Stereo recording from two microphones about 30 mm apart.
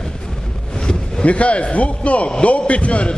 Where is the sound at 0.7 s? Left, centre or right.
Left.